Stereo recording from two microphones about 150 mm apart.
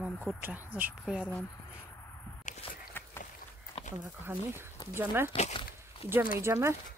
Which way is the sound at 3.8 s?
40° left (ahead or behind).